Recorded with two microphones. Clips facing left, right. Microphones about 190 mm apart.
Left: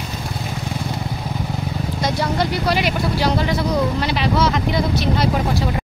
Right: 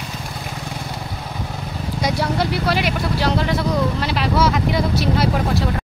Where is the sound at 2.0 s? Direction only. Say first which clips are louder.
Even; 5° right (ahead or behind).